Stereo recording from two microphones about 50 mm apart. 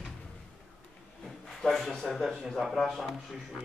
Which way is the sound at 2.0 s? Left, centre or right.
Centre.